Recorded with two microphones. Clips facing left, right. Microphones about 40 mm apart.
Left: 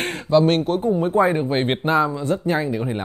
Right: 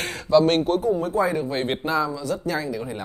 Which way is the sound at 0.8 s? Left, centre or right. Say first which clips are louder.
Left 4 dB; left.